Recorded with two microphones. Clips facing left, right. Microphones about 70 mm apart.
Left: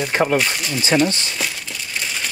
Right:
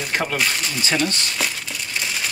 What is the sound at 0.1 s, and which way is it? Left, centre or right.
Speech, centre.